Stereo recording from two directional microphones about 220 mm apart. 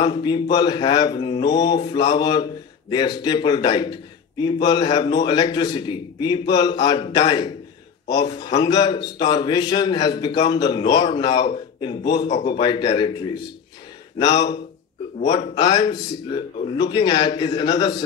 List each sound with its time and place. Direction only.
0.0 s a man's voice: 20° left (ahead or behind)
15.1 s a man's voice: 30° left (ahead or behind)
15.5 s a man's voice: 20° left (ahead or behind)